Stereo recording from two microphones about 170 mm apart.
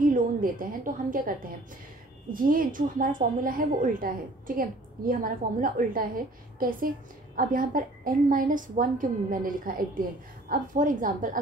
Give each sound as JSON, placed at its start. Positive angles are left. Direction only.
{"t": 0.1, "sound": "a woman's voice", "side_deg": -55}
{"t": 2.3, "sound": "a woman's voice", "side_deg": -55}